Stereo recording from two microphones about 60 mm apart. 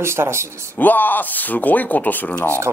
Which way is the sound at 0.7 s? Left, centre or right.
Left.